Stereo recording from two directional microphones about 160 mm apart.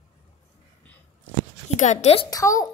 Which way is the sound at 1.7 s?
50° left (ahead or behind).